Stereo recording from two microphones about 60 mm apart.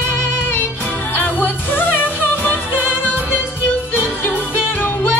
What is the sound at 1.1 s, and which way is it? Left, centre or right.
Music, left.